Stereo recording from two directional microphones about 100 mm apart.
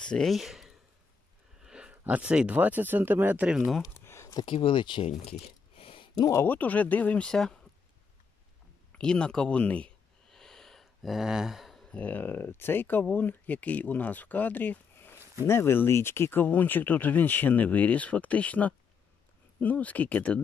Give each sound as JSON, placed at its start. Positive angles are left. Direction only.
{"t": 0.0, "sound": "speech", "side_deg": 5}
{"t": 3.5, "sound": "speech", "side_deg": 0}
{"t": 4.0, "sound": "a sound", "side_deg": 25}
{"t": 4.5, "sound": "speech", "side_deg": 60}
{"t": 5.3, "sound": "a sound", "side_deg": 65}
{"t": 6.1, "sound": "speech", "side_deg": 40}
{"t": 6.4, "sound": "speech", "side_deg": 15}
{"t": 8.9, "sound": "a sound", "side_deg": 10}
{"t": 12.0, "sound": "speech", "side_deg": 15}